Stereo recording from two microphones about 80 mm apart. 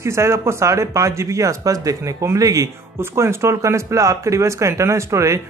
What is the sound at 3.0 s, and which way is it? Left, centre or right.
Speech, right.